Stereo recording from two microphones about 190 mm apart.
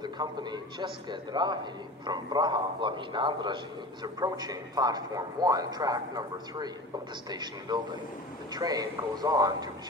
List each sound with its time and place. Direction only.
0.0 s a man's voice: 25° right (ahead or behind)